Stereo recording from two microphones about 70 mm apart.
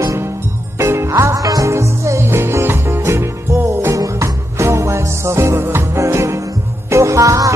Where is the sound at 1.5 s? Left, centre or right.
Right.